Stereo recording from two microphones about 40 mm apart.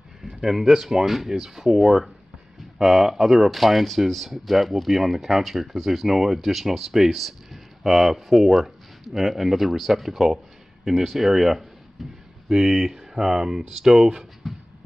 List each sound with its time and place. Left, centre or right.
0.2 s speech: centre
12.4 s speech: centre
14.4 s a sound: centre